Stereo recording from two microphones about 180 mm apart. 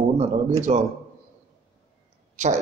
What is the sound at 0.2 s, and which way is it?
Speech, 40° right (ahead or behind).